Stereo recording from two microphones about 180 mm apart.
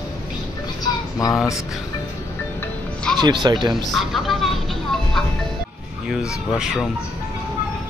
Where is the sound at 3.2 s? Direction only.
25° right (ahead or behind).